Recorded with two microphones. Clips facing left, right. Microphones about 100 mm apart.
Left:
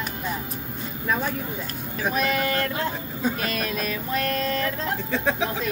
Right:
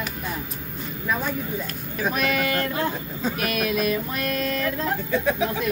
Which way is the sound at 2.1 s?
30° left (ahead or behind).